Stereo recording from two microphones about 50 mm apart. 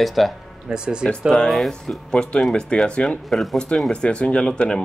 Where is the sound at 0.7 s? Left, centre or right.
Centre.